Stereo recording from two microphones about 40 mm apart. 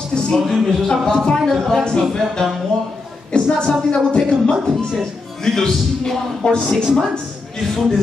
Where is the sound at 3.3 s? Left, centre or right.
Left.